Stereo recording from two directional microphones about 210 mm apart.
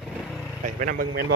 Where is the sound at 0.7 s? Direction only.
45° right (ahead or behind).